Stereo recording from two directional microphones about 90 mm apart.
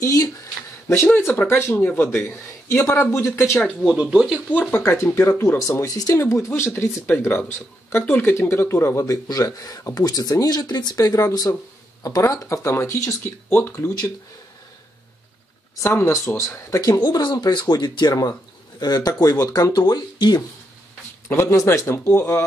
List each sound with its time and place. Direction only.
0.0 s speech: 35° left (ahead or behind)
1.5 s speech: 25° left (ahead or behind)
3.8 s speech: 10° right (ahead or behind)
4.5 s speech: 20° left (ahead or behind); by 14.0 s 35° left (ahead or behind)
15.7 s speech: 30° left (ahead or behind); by 20.4 s 50° left (ahead or behind)
21.4 s speech: 30° left (ahead or behind)